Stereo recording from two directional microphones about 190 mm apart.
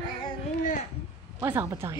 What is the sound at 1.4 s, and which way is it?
Speech, 10° right (ahead or behind).